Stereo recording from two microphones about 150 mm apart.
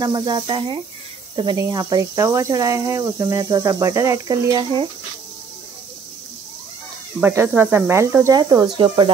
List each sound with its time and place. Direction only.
0.0 s speech: 30° right (ahead or behind)
7.2 s speech: 15° right (ahead or behind); by 9.1 s 35° right (ahead or behind)